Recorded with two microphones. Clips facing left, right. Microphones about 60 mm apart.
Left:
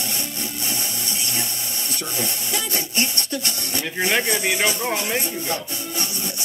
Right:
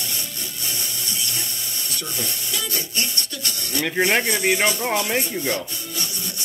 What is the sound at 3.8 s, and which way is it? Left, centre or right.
Speech, right.